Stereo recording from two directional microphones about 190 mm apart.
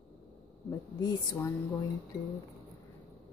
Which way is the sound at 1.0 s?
15° left (ahead or behind).